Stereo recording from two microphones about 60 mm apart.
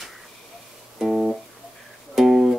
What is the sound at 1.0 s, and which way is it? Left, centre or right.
Guitar, centre.